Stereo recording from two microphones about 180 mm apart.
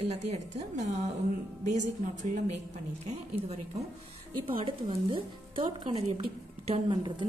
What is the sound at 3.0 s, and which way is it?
A woman's voice, 35° right (ahead or behind).